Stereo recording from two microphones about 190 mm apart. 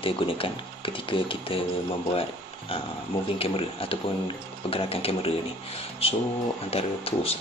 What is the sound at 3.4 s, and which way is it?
Speech, 30° left (ahead or behind).